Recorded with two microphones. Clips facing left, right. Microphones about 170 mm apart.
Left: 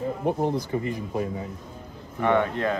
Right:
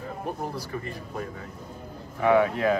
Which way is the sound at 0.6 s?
20° left (ahead or behind).